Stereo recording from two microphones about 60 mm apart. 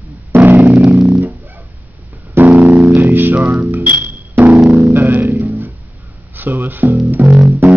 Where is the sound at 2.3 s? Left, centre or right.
Right.